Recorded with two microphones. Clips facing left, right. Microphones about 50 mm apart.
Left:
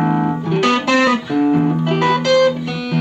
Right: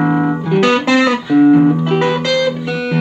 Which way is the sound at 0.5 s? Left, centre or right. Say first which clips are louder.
Right 3 dB; right.